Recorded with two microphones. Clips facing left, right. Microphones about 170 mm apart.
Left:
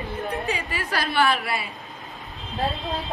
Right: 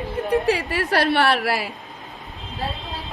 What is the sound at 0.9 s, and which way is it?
Speech, 65° right (ahead or behind).